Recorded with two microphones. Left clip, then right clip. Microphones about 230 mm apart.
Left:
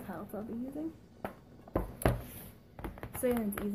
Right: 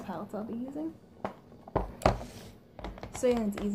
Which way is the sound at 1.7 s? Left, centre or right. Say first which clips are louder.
Right 5 dB; centre.